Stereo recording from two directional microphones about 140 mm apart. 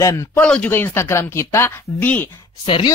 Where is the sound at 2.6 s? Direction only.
35° left (ahead or behind).